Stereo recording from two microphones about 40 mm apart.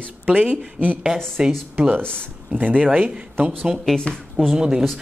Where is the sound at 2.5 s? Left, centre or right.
Right.